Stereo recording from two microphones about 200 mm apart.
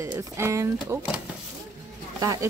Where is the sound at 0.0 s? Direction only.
15° right (ahead or behind).